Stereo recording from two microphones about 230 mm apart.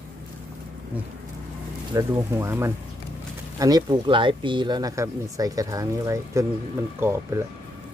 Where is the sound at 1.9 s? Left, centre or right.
Centre.